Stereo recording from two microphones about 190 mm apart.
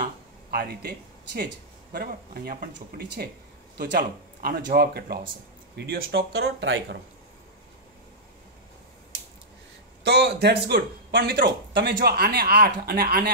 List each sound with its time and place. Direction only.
0.0 s speech: 50° right (ahead or behind)
3.7 s speech: 55° right (ahead or behind)
10.0 s speech: 60° right (ahead or behind)